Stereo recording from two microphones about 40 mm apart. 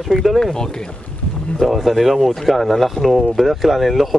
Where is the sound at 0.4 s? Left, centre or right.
Centre.